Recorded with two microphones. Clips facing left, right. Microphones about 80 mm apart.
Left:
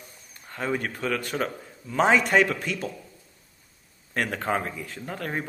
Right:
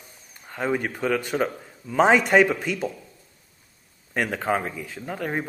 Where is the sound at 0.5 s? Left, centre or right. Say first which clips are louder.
Right 3 dB; centre.